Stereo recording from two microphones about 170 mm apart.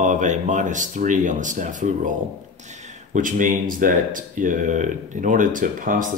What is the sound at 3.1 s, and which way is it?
Speech, 50° right (ahead or behind).